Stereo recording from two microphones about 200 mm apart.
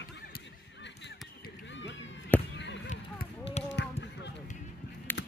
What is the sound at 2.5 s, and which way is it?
Basketball bounce, 60° left (ahead or behind).